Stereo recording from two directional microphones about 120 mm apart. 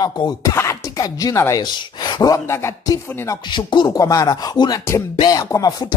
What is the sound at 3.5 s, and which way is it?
Speech, 35° left (ahead or behind).